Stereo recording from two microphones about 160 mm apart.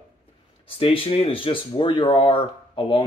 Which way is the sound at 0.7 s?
35° left (ahead or behind).